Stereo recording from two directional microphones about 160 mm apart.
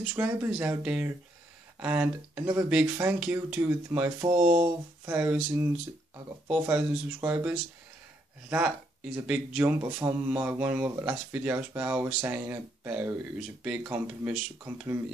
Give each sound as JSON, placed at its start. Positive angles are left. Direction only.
{"t": 0.0, "sound": "speech", "side_deg": -10}
{"t": 4.3, "sound": "speech", "side_deg": -45}
{"t": 5.0, "sound": "speech", "side_deg": -10}